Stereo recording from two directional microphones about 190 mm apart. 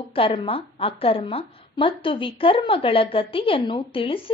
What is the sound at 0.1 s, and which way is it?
A woman's voice, 30° left (ahead or behind).